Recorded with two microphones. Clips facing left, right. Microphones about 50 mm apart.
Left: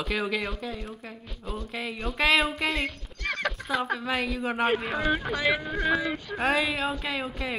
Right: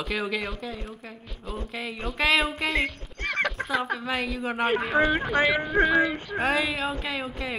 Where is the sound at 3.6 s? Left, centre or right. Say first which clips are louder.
Right 1 dB; centre.